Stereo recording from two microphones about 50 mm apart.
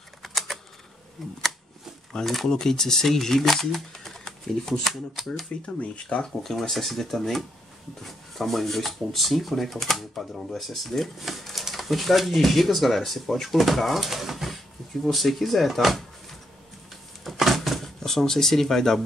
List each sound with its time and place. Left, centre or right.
0.2 s typing: centre
1.2 s speech: centre
5.8 s speech: left
6.2 s speech: centre
17.2 s a sound: centre